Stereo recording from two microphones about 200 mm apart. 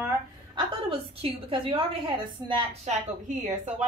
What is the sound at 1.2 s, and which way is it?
A woman's voice, 25° right (ahead or behind).